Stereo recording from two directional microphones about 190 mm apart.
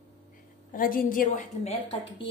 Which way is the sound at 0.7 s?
45° left (ahead or behind).